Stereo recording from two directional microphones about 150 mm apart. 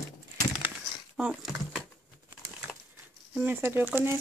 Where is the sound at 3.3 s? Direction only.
15° right (ahead or behind).